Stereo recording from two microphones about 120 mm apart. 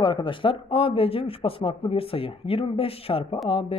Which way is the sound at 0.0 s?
40° left (ahead or behind).